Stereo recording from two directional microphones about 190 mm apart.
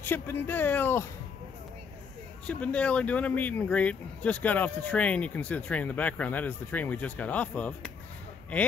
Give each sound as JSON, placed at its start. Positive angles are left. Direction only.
{"t": 0.0, "sound": "speech", "side_deg": 10}
{"t": 2.4, "sound": "speech", "side_deg": 5}